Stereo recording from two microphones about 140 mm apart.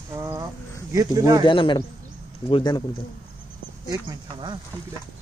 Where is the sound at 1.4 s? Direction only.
35° left (ahead or behind).